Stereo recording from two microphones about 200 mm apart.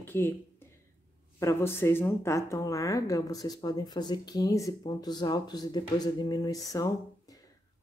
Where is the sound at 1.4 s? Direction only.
15° left (ahead or behind).